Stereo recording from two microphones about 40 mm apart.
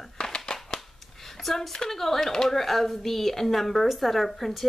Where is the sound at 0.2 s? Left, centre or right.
Centre.